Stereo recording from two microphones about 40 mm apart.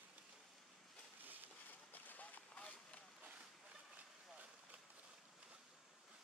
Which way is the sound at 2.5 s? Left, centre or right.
Left.